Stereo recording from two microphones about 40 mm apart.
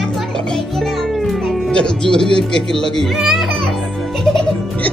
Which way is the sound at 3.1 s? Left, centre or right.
Centre.